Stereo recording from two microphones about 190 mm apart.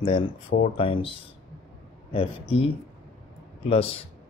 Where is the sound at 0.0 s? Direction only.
25° left (ahead or behind).